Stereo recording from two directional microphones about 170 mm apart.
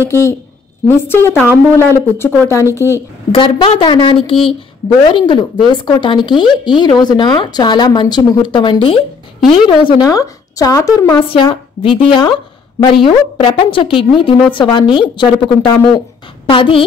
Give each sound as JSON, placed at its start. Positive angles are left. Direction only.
{"t": 0.0, "sound": "speech", "side_deg": 15}
{"t": 3.3, "sound": "speech", "side_deg": 30}
{"t": 11.2, "sound": "speech", "side_deg": 30}